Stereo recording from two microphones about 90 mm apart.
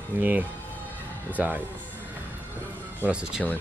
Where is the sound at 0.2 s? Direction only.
20° right (ahead or behind).